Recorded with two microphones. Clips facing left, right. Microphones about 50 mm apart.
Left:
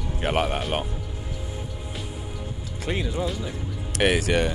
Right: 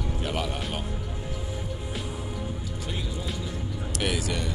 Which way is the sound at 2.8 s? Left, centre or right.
Left.